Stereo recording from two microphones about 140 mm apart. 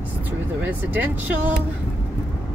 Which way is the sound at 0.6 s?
10° right (ahead or behind).